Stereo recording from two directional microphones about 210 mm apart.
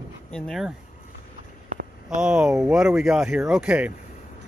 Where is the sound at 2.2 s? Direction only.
5° right (ahead or behind).